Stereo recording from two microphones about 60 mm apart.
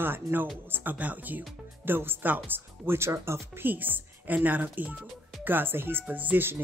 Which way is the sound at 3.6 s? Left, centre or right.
Right.